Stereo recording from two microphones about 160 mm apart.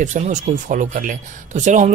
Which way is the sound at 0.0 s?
50° right (ahead or behind).